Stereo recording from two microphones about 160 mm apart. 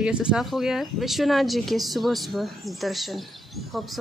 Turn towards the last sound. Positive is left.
turn(degrees=0)  # may be behind; listen again after turning